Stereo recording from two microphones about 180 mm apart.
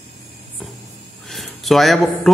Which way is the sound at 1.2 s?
Centre (ahead or behind).